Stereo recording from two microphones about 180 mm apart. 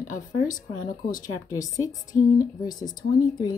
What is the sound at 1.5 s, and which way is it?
Speech, 20° left (ahead or behind).